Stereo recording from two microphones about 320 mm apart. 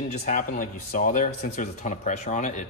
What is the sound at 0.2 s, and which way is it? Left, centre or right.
A man's voice, left.